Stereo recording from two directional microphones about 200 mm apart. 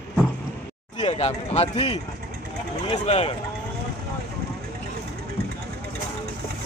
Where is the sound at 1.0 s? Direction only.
35° left (ahead or behind).